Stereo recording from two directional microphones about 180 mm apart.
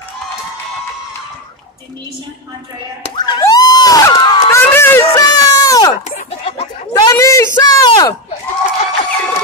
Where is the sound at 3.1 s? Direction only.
25° left (ahead or behind).